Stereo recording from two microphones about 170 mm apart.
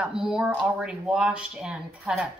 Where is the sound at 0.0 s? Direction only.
5° right (ahead or behind).